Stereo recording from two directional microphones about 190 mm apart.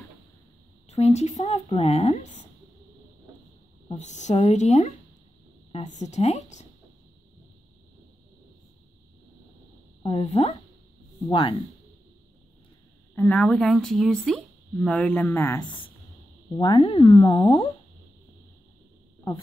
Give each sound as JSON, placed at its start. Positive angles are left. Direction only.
{"t": 0.8, "sound": "speech", "side_deg": 35}
{"t": 3.9, "sound": "speech", "side_deg": 40}
{"t": 10.0, "sound": "a woman's voice", "side_deg": 30}
{"t": 13.1, "sound": "speech", "side_deg": 10}